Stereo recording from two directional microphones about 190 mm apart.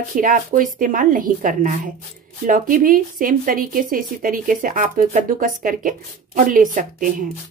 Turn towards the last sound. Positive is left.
turn(degrees=-45)  # may be behind; listen again after turning